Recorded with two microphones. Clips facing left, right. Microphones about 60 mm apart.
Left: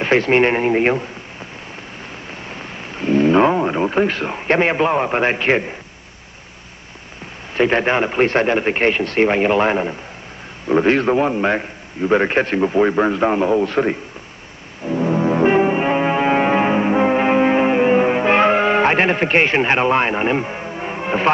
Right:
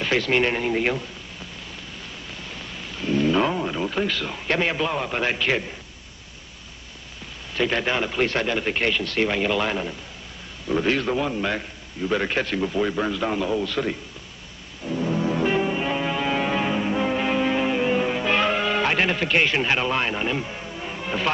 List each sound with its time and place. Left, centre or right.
0.0 s a man's voice: left
2.5 s speech: left
7.5 s a man's voice: left
14.9 s music: left